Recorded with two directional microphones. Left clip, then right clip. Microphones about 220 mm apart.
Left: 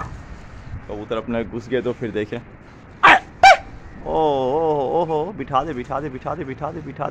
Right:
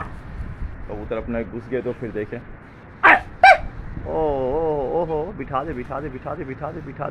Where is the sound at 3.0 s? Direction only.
25° left (ahead or behind).